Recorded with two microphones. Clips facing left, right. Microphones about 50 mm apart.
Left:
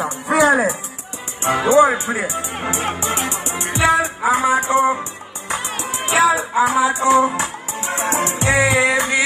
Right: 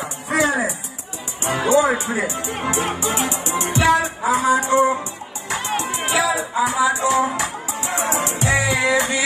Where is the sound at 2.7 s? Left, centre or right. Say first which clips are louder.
Even; left.